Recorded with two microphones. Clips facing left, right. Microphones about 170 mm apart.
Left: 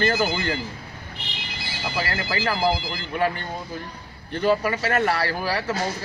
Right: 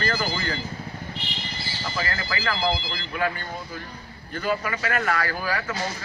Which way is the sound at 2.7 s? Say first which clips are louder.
Left 2 dB; 50° left (ahead or behind).